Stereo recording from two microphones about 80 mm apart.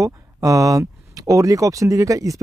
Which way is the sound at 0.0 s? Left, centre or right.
Right.